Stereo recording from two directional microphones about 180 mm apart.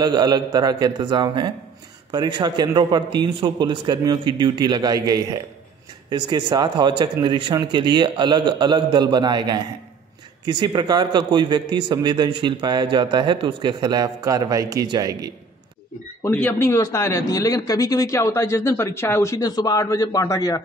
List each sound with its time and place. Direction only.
0.0 s a man's voice: 20° right (ahead or behind)
16.2 s a man's voice: 10° left (ahead or behind)